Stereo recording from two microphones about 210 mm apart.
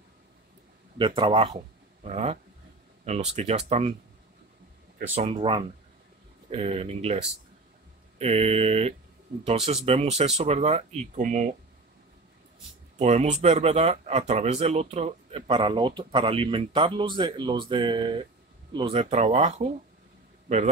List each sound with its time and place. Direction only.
0.9 s speech: 25° right (ahead or behind)
5.1 s speech: 25° right (ahead or behind)
8.2 s speech: 30° right (ahead or behind)
13.0 s a man's voice: 30° right (ahead or behind)